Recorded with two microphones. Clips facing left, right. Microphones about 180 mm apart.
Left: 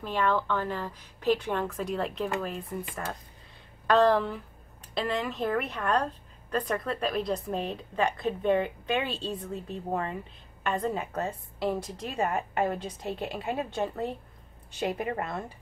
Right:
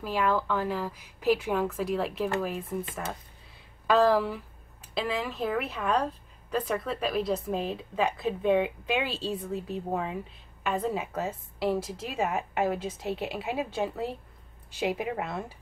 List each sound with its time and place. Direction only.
0.0 s speech: 5° right (ahead or behind)